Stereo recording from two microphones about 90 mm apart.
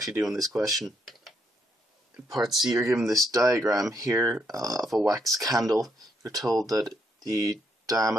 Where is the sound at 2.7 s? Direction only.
35° right (ahead or behind).